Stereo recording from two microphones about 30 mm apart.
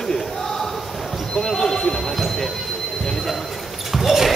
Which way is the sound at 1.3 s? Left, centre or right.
Centre.